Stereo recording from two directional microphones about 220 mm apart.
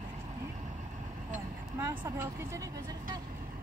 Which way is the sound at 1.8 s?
10° right (ahead or behind).